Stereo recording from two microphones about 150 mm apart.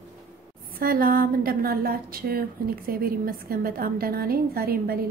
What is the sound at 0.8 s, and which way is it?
A woman's voice, 75° right (ahead or behind).